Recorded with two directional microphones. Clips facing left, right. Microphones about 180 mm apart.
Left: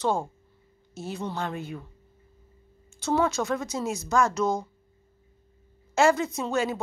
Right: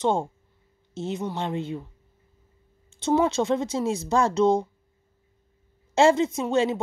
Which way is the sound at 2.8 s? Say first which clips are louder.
Right 3 dB; 25° right (ahead or behind).